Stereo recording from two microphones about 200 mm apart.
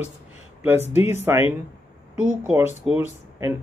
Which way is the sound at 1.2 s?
10° right (ahead or behind).